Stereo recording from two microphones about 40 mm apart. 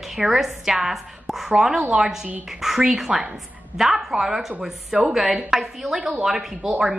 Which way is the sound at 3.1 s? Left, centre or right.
Centre.